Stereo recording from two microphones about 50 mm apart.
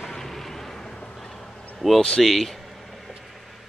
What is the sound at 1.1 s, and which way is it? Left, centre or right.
Fowl, centre.